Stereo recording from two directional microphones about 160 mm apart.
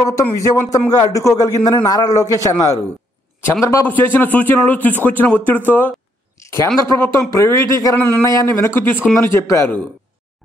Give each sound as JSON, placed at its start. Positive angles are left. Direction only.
{"t": 0.0, "sound": "a man's voice", "side_deg": 20}
{"t": 6.3, "sound": "a sound", "side_deg": 20}
{"t": 7.0, "sound": "speech", "side_deg": 20}